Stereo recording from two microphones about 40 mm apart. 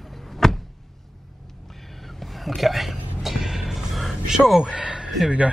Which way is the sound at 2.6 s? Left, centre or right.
Centre.